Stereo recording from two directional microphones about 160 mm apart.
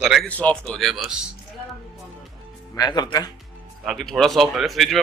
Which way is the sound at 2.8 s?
25° left (ahead or behind).